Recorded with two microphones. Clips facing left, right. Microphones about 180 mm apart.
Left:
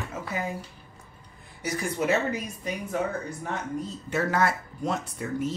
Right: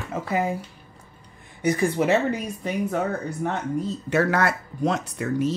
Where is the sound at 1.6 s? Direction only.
60° right (ahead or behind).